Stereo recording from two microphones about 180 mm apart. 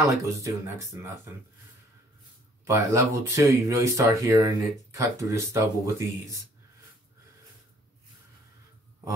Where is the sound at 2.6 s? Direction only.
15° right (ahead or behind).